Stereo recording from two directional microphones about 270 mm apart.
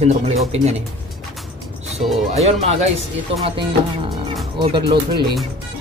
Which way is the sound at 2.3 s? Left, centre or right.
Right.